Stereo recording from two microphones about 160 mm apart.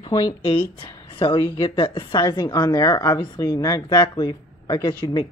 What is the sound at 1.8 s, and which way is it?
Speech, 30° left (ahead or behind).